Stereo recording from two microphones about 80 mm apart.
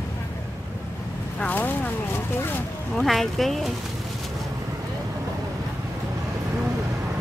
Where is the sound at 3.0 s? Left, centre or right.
Centre.